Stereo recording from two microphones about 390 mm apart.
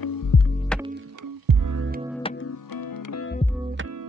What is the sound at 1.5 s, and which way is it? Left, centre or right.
Music, right.